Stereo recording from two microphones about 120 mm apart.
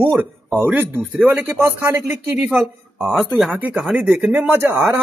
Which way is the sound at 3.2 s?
5° right (ahead or behind).